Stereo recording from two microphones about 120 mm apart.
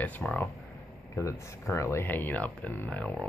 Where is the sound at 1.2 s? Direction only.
25° left (ahead or behind).